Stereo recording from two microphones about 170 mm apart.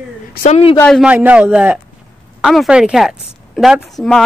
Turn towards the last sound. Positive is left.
turn(degrees=0)  # may be behind; listen again after turning